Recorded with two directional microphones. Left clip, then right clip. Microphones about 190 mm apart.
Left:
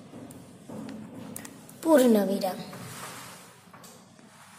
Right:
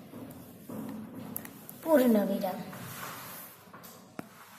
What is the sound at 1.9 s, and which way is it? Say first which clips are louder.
Speech: left 4 dB; 30° left (ahead or behind).